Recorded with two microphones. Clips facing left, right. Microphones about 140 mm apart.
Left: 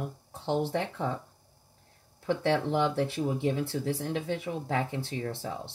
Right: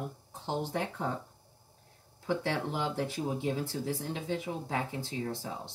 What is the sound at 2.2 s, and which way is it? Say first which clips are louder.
Speech: left 5 dB; 65° left (ahead or behind).